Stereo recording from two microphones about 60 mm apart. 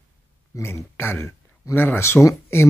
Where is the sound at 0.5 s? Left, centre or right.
Left.